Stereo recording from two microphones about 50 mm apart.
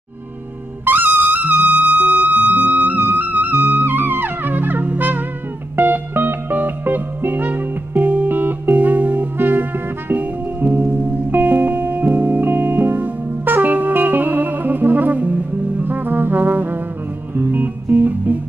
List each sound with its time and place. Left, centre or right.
0.8 s music: right
8.3 s music: right
8.7 s music: right